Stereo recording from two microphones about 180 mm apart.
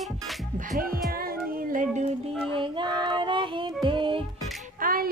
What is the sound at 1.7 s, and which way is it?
Music, 45° right (ahead or behind).